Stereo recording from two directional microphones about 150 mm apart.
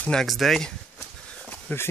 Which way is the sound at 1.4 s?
15° left (ahead or behind).